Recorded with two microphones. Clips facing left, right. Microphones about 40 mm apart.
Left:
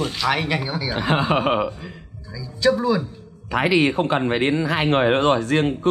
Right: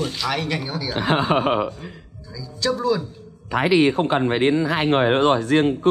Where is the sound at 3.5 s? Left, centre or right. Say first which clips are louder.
Right 1 dB; left.